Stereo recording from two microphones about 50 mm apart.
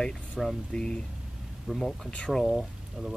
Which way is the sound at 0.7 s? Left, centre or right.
Centre.